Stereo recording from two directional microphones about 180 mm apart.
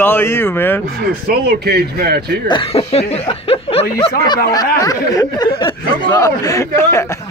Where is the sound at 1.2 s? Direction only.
60° right (ahead or behind).